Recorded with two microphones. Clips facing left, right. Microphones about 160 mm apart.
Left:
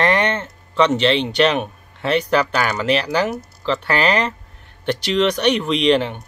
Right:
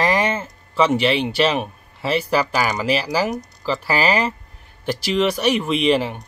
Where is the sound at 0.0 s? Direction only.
5° right (ahead or behind).